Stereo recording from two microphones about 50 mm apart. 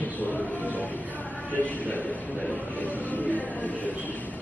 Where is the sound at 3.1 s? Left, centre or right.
Left.